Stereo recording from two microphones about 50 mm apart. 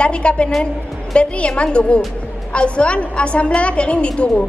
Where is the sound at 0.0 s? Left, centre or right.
Left.